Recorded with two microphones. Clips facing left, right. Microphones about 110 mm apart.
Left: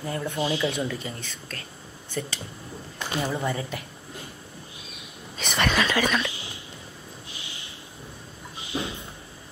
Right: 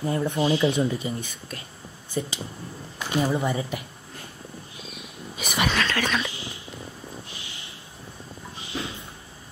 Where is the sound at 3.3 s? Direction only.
15° right (ahead or behind).